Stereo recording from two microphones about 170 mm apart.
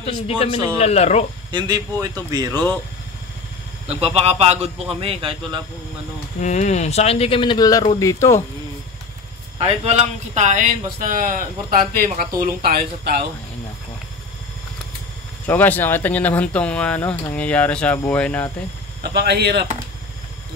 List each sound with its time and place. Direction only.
0.0 s speech: 35° left (ahead or behind)
1.5 s speech: 25° right (ahead or behind)
2.5 s speech: 10° left (ahead or behind)
3.8 s a man's voice: 35° right (ahead or behind)
6.4 s speech: 45° left (ahead or behind); by 8.4 s 20° left (ahead or behind)
9.6 s a man's voice: 30° right (ahead or behind)
10.3 s speech: 45° right (ahead or behind); by 13.2 s 65° right (ahead or behind)
15.4 s speech: 10° left (ahead or behind)
19.0 s speech: 75° right (ahead or behind)